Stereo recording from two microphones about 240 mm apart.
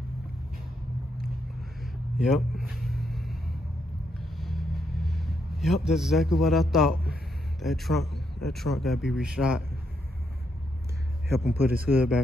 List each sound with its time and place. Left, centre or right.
1.8 s a sound: centre
4.2 s vehicle: centre
7.6 s a man's voice: centre
11.4 s speech: right
11.9 s a man's voice: centre